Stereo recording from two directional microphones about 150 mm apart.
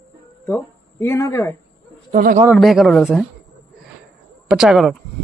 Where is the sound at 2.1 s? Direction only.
60° right (ahead or behind).